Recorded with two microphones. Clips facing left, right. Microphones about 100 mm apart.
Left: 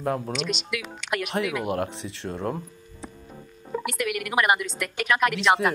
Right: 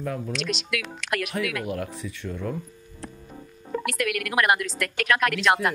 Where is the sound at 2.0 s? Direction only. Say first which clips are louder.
Left 1 dB; 80° left.